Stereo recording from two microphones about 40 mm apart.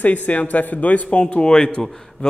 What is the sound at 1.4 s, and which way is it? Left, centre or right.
Speech, centre.